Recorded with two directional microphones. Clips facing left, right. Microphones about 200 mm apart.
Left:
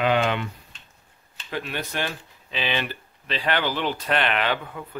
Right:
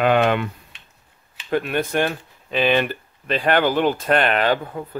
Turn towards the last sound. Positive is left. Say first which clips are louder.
# right 6 dB
turn(degrees=-35)  # may be behind; listen again after turning